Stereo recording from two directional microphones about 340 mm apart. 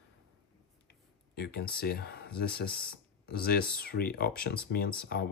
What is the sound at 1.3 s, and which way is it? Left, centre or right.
Speech, left.